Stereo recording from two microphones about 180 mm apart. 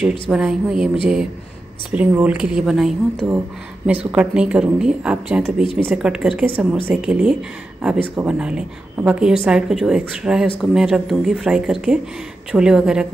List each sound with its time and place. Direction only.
0.3 s a woman's voice: 5° right (ahead or behind)
1.9 s a woman's voice: 5° right (ahead or behind)
5.6 s speech: 30° left (ahead or behind)
5.9 s a woman's voice: 5° right (ahead or behind)